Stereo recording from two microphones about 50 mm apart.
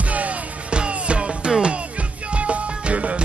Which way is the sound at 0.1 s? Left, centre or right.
Right.